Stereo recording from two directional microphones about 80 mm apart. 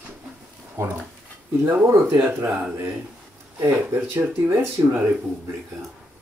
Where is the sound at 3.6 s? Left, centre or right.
Right.